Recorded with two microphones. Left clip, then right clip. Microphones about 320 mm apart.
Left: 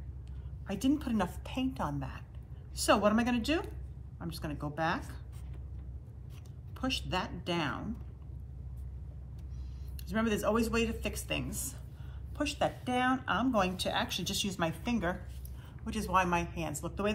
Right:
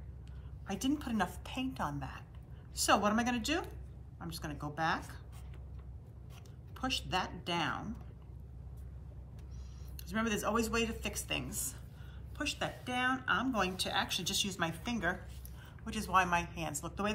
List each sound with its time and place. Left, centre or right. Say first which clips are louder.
0.7 s a woman's voice: left 4 dB; centre
6.8 s a woman's voice: left 1 dB; centre
10.0 s a woman's voice: left 3 dB; centre